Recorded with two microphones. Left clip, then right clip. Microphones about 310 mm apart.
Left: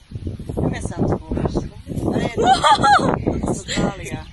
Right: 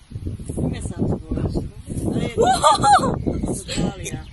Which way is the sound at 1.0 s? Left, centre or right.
Left.